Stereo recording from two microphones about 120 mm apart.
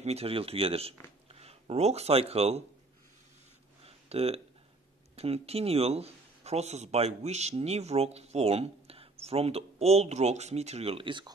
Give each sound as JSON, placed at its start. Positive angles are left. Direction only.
{"t": 0.0, "sound": "speech", "side_deg": -60}
{"t": 3.8, "sound": "a sound", "side_deg": -55}
{"t": 5.1, "sound": "speech", "side_deg": -55}